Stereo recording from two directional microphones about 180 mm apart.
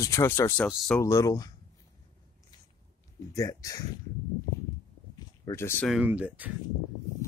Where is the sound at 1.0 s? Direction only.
20° left (ahead or behind).